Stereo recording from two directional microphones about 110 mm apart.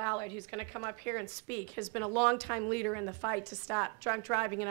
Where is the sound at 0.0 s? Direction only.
35° left (ahead or behind).